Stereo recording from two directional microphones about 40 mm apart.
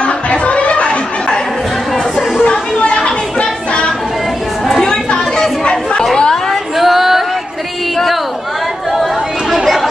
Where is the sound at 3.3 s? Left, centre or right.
Left.